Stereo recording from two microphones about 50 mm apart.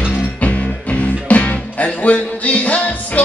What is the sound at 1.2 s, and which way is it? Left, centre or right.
Music, left.